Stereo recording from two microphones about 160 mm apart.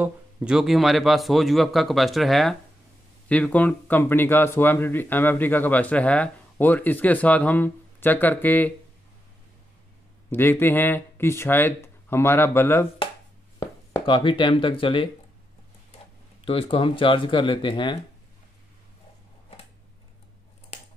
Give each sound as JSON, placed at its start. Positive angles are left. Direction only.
{"t": 0.0, "sound": "speech", "side_deg": -5}
{"t": 10.3, "sound": "speech", "side_deg": 15}
{"t": 13.6, "sound": "speech", "side_deg": 30}
{"t": 16.3, "sound": "speech", "side_deg": 35}